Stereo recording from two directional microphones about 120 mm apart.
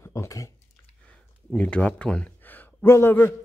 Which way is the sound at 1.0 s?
10° left (ahead or behind).